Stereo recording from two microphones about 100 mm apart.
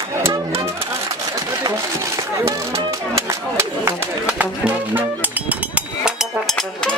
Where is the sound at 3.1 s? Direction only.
25° right (ahead or behind).